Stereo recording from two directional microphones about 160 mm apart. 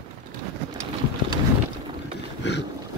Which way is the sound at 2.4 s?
90° left.